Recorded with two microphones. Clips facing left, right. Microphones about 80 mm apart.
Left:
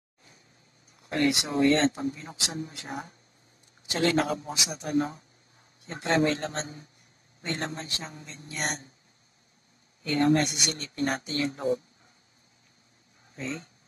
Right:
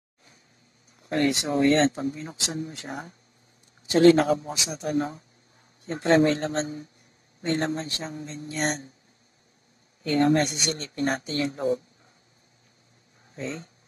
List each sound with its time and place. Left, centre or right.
1.0 s speech: right
10.0 s speech: right
13.3 s speech: right